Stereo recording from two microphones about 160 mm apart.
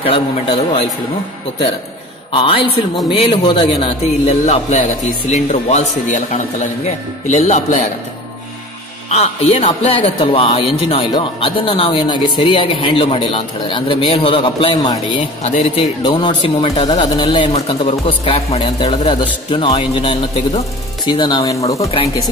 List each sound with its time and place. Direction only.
0.0 s a man's voice: 35° left (ahead or behind)
2.3 s a man's voice: 35° left (ahead or behind)
9.1 s a man's voice: 40° left (ahead or behind)
16.0 s a man's voice: 30° left (ahead or behind)